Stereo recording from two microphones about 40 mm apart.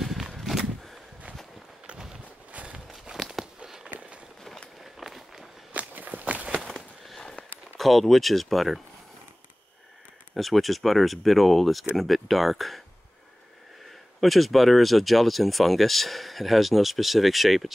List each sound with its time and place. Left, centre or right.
0.0 s a sound: centre
2.5 s walk: right
2.9 s walk: centre
3.6 s walk: centre
4.9 s walk: centre
5.7 s walk: right
7.7 s speech: centre
10.3 s speech: centre
13.8 s speech: centre